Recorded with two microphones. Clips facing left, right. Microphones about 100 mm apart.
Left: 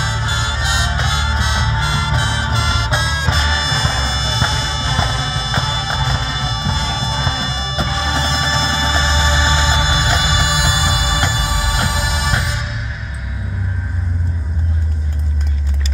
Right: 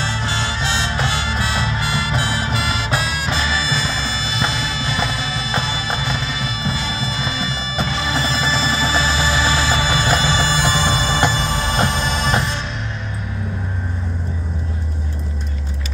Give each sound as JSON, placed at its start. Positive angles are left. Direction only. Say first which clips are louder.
{"t": 0.0, "sound": "music", "louder": "left 1 dB", "side_deg": 15}